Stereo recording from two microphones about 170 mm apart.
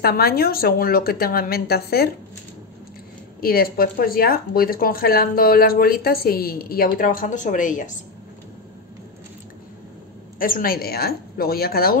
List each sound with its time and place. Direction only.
0.0 s speech: 65° left (ahead or behind)
3.3 s speech: 60° left (ahead or behind)
10.4 s speech: 55° left (ahead or behind)